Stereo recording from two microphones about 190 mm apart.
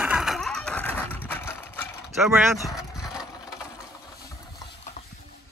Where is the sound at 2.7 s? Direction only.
5° right (ahead or behind).